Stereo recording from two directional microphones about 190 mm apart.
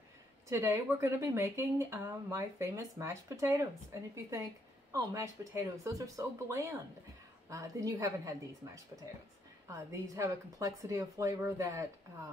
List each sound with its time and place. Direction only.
0.5 s speech: 15° right (ahead or behind)
9.7 s speech: 15° right (ahead or behind)